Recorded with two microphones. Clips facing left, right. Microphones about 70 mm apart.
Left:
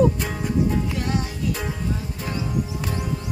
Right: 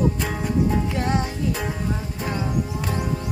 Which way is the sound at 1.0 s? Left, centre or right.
Right.